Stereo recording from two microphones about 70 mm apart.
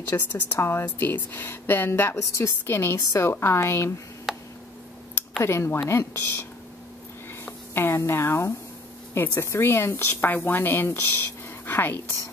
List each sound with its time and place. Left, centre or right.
0.1 s a woman's voice: left
0.8 s a woman's voice: left
2.1 s a woman's voice: left
2.4 s speech: left
3.0 s speech: left
4.3 s a sound: centre
5.4 s speech: left
7.4 s a woman's voice: left